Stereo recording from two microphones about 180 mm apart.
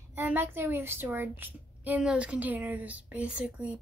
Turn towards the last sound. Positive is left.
turn(degrees=-5)  # may be behind; listen again after turning